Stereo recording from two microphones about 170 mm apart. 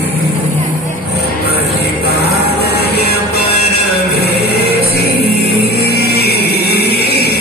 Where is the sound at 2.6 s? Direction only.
70° left (ahead or behind).